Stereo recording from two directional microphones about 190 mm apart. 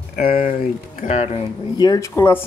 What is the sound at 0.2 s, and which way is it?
Speech, 45° left (ahead or behind).